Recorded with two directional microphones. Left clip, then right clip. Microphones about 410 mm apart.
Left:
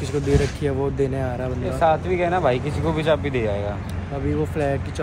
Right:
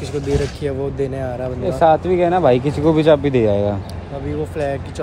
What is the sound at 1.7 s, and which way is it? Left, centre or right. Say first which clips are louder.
Speech: right 6 dB; right.